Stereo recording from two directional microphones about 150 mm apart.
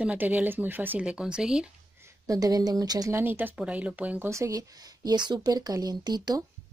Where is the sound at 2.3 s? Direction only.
25° right (ahead or behind).